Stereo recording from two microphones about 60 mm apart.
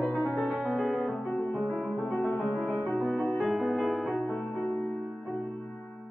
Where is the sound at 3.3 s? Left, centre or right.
Centre.